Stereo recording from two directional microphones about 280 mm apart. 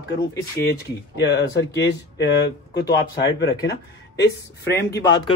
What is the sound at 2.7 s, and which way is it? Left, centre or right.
Speech, left.